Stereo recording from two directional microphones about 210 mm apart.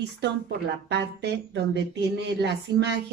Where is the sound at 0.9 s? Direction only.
50° right (ahead or behind).